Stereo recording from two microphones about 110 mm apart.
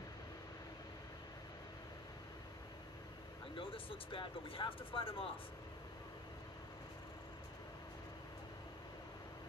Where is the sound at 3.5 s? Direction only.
55° left (ahead or behind).